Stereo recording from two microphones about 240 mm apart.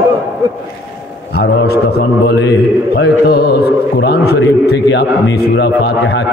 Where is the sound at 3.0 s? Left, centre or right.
Left.